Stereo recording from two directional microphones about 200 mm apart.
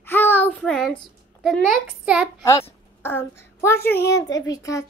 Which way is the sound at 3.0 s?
10° left (ahead or behind).